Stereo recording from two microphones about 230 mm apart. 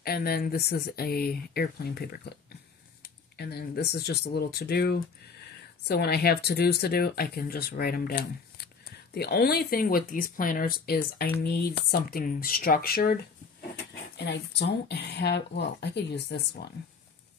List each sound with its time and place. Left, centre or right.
0.0 s speech: left